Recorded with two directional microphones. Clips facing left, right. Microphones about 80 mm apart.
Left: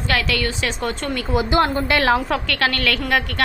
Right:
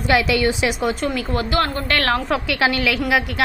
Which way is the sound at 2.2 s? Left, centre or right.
Centre.